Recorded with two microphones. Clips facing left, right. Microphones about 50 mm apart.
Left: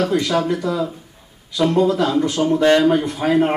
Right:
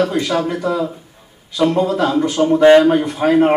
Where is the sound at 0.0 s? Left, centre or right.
Centre.